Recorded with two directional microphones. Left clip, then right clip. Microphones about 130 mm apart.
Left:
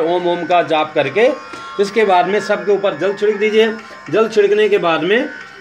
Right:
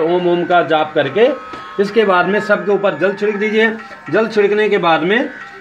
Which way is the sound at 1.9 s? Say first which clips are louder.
Even; 60° right (ahead or behind).